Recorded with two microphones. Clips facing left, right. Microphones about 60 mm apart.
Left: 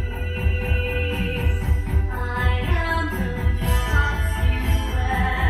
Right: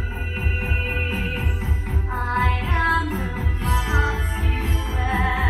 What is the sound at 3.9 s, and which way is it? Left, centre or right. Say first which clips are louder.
Music: even; right.